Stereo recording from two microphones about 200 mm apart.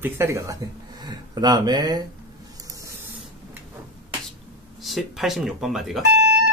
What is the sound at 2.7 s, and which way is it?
Spray, 15° right (ahead or behind).